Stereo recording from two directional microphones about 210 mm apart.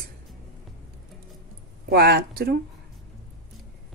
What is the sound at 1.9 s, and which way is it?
Speech, 50° right (ahead or behind).